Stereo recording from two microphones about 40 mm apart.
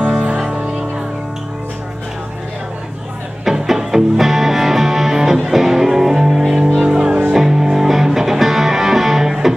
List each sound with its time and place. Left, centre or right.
0.2 s music: right
3.4 s music: centre